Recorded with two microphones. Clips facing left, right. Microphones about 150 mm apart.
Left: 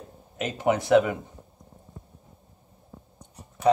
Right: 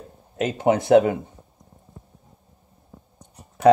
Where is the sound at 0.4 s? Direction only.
30° right (ahead or behind).